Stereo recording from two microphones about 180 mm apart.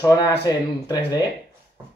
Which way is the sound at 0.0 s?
20° left (ahead or behind).